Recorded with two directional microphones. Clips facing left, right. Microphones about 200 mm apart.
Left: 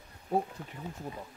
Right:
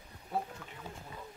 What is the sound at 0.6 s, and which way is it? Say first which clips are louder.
Speech: left 4 dB; 40° left (ahead or behind).